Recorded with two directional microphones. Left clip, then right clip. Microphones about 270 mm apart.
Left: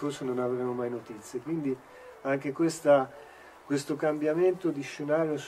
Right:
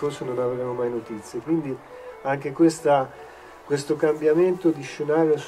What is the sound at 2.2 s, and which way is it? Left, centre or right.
Speech, left.